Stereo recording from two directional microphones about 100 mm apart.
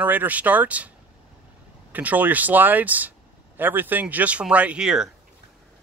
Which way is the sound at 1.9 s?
15° right (ahead or behind).